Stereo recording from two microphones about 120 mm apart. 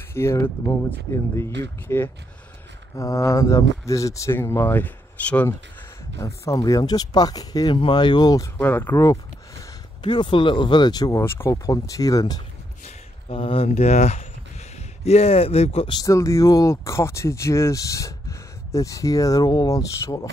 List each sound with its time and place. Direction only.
0.1 s speech: 20° left (ahead or behind)
6.1 s speech: 25° left (ahead or behind)
7.7 s speech: 45° left (ahead or behind)
8.5 s speech: 15° left (ahead or behind)
10.0 s speech: 40° left (ahead or behind)
12.8 s speech: 50° left (ahead or behind); by 14.2 s 70° left (ahead or behind)
14.8 s speech: 60° left (ahead or behind)
15.9 s speech: 30° left (ahead or behind)